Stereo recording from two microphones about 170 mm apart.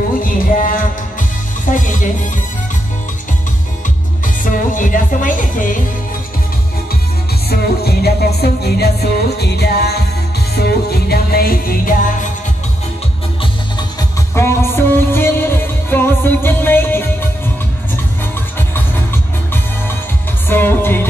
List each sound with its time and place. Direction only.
0.2 s music: 55° left (ahead or behind)
4.5 s music: 50° left (ahead or behind)
7.4 s music: 65° left (ahead or behind)
14.3 s music: 15° left (ahead or behind)
20.4 s music: 10° left (ahead or behind)